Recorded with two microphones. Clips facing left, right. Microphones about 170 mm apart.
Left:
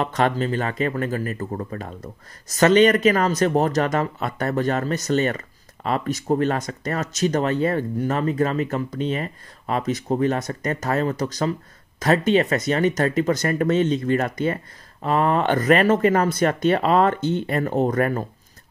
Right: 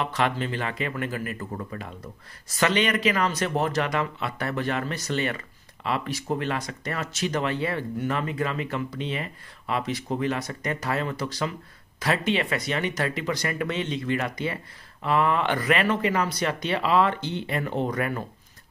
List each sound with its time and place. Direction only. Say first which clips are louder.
0.0 s speech: left 5 dB; 40° left (ahead or behind)